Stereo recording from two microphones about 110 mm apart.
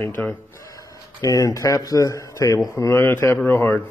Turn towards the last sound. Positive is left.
turn(degrees=20)  # may be behind; listen again after turning